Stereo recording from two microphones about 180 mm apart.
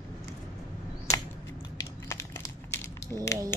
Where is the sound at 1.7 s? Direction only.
15° left (ahead or behind).